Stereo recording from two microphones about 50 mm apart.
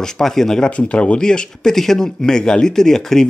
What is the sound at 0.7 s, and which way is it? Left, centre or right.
Speech, left.